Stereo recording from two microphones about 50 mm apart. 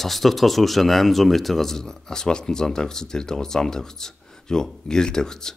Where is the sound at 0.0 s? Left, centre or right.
Centre.